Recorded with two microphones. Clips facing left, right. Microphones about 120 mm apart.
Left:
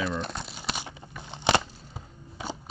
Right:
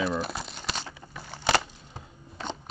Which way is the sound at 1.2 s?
20° left (ahead or behind).